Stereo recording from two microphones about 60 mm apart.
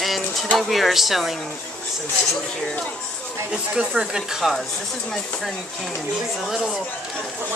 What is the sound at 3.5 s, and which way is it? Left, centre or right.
Speech, centre.